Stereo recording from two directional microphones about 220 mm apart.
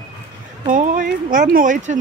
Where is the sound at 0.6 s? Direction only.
35° right (ahead or behind).